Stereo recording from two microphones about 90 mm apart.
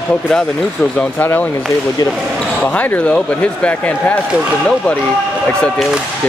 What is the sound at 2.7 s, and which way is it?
Speech, 15° left (ahead or behind).